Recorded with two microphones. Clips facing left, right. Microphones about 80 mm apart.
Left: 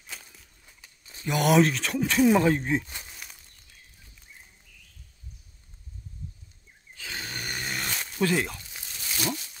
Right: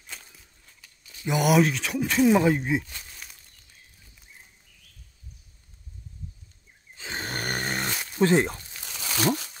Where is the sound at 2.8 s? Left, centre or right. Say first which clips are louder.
Left 1 dB; left.